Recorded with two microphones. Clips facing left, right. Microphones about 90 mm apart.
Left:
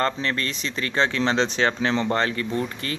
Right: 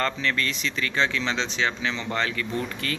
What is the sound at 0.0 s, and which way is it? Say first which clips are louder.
Speech: left 2 dB; 35° left (ahead or behind).